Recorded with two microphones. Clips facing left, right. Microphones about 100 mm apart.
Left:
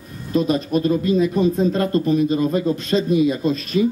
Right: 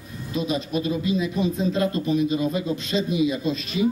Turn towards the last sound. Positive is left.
turn(degrees=45)  # may be behind; listen again after turning